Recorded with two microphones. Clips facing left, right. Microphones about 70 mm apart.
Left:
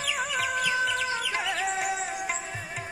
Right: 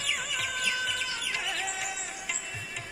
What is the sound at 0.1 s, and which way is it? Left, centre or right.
Chicken, left.